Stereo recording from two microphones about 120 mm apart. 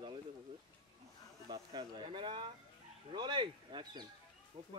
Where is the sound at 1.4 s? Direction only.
40° right (ahead or behind).